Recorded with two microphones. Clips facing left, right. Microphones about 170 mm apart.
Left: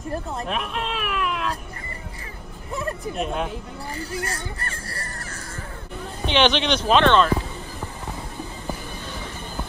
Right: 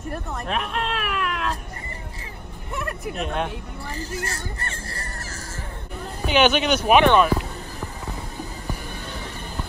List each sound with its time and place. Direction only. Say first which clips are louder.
0.5 s cat: right 3 dB; centre (ahead or behind)
2.7 s speech: left 2 dB; 25° left (ahead or behind)
3.2 s speech: even; centre (ahead or behind)
4.0 s speech: left 1 dB; 30° left (ahead or behind)
6.2 s speech: right 1 dB; 5° right (ahead or behind)